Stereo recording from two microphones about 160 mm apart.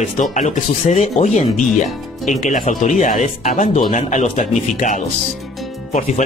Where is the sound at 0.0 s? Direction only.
50° left (ahead or behind).